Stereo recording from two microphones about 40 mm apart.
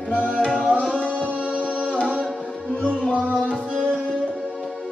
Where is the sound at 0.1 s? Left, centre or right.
Left.